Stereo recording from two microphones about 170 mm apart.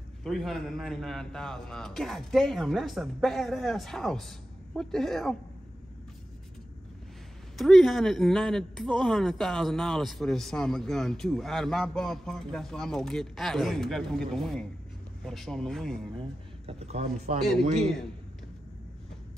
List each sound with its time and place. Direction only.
0.2 s speech: centre (ahead or behind)
7.5 s speech: centre (ahead or behind)
16.2 s speech: 35° right (ahead or behind)